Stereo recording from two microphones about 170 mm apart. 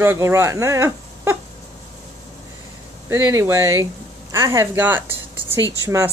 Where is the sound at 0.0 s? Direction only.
15° right (ahead or behind).